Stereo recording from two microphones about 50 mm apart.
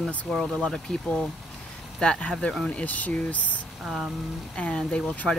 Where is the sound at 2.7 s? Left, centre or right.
Left.